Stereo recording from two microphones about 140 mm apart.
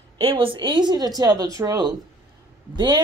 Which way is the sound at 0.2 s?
40° right (ahead or behind).